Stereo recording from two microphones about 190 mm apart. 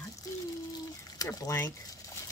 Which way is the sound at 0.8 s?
20° left (ahead or behind).